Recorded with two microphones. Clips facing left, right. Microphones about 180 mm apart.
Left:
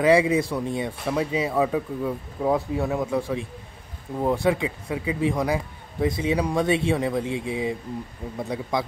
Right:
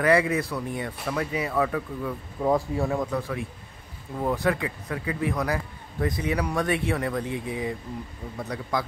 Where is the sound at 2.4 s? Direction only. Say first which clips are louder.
Left 1 dB; centre (ahead or behind).